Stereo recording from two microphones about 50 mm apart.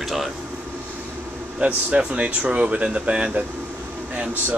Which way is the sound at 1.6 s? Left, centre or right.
Right.